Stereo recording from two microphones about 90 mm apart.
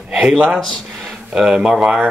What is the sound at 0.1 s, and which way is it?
Speech, 5° right (ahead or behind).